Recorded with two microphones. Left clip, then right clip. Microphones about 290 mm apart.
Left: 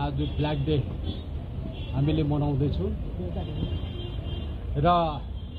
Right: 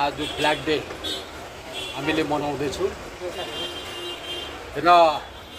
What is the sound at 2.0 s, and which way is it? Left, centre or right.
Speech, right.